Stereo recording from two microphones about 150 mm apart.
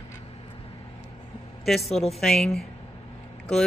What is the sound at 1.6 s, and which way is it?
Speech, centre (ahead or behind).